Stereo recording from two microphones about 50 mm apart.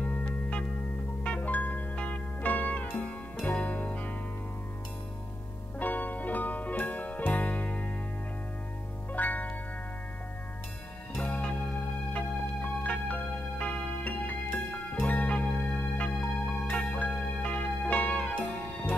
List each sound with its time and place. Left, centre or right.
0.0 s music: left
5.8 s music: left
9.1 s music: left
11.2 s music: left